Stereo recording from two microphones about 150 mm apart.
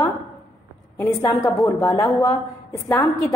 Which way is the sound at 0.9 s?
20° left (ahead or behind).